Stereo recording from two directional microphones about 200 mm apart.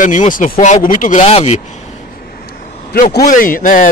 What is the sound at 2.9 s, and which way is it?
Speech, 50° left (ahead or behind).